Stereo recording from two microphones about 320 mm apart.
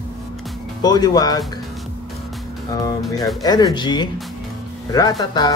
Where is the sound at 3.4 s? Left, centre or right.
Centre.